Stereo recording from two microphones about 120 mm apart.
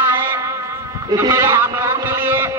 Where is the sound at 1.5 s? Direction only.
20° right (ahead or behind).